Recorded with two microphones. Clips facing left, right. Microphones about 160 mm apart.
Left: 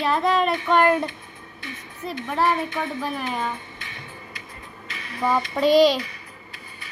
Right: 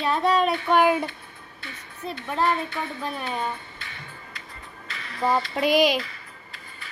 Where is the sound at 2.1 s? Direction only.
15° left (ahead or behind).